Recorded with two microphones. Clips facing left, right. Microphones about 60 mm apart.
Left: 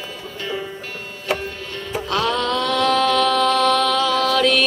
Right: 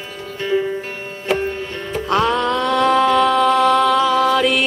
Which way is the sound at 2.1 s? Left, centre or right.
Right.